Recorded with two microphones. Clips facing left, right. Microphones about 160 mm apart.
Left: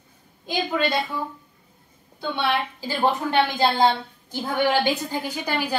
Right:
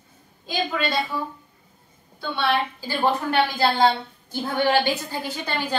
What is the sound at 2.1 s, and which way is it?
A woman's voice, 15° left (ahead or behind).